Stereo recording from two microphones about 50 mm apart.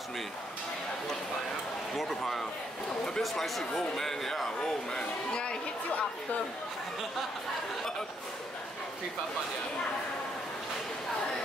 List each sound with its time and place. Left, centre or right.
2.0 s speech: centre
4.6 s speech: centre